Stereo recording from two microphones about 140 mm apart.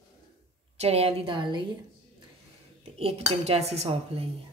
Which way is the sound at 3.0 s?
45° right (ahead or behind).